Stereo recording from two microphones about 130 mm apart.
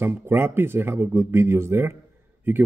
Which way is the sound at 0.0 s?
15° right (ahead or behind).